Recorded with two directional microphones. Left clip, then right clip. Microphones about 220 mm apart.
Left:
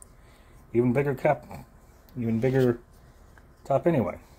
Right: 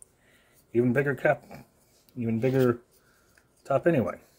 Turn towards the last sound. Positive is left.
turn(degrees=-5)  # may be behind; listen again after turning